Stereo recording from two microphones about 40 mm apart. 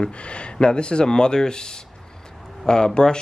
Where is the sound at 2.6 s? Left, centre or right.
Centre.